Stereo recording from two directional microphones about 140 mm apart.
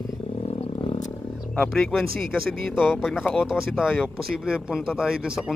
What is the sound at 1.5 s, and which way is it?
Speech, 5° left (ahead or behind).